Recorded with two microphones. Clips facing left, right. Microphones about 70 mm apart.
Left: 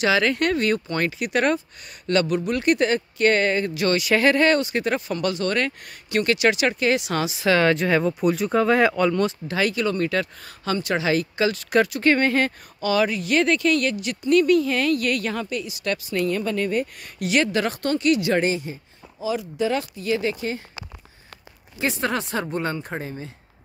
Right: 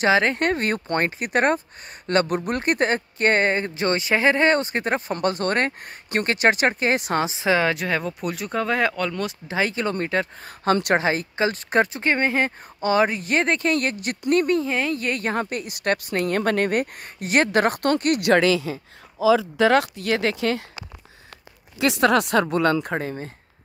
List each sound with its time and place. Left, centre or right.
0.0 s speech: right
4.6 s speech: right
7.4 s speech: centre
9.5 s speech: right
10.6 s speech: right
11.1 s speech: right
12.0 s speech: centre
12.8 s speech: right
17.0 s speech: right
21.7 s speech: right